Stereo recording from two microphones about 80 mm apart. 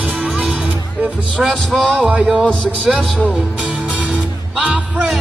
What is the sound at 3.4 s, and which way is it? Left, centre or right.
Music, centre.